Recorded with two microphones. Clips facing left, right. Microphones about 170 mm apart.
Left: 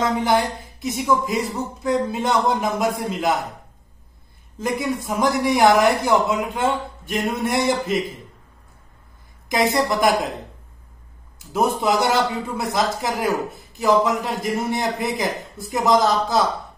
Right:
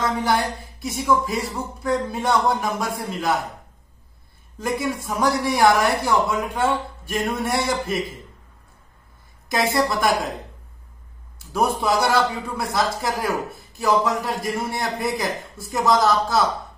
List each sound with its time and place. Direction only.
0.2 s a man's voice: 20° left (ahead or behind)
4.6 s a man's voice: 20° left (ahead or behind)
9.5 s a man's voice: 20° left (ahead or behind)
11.8 s a man's voice: 20° left (ahead or behind)